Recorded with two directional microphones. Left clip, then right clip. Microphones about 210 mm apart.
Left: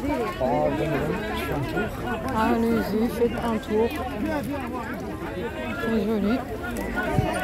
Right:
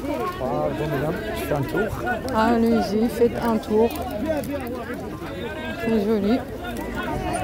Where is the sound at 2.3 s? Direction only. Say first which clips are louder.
Right 3 dB; 20° right (ahead or behind).